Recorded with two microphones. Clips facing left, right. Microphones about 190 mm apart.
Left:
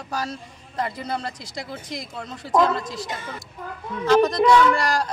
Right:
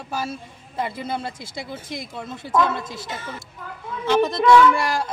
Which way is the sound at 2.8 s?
25° right (ahead or behind).